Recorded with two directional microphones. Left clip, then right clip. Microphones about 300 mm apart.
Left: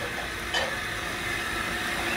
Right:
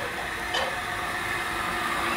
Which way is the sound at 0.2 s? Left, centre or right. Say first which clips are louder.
Right 1 dB; right.